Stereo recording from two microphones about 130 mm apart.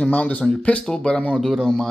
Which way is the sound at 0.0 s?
10° left (ahead or behind).